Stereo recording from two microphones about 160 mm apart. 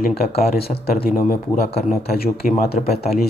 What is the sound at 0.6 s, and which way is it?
Speech, 75° left (ahead or behind).